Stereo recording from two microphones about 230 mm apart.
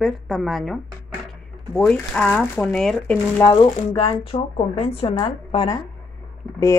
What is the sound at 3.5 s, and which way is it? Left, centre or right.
Speech, left.